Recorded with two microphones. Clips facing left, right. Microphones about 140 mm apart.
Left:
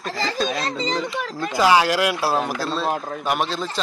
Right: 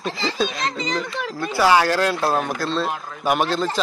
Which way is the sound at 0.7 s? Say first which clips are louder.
Left 1 dB; 30° left (ahead or behind).